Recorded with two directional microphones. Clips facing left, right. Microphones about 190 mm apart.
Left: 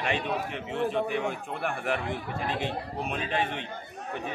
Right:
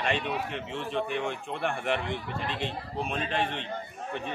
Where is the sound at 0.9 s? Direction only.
10° left (ahead or behind).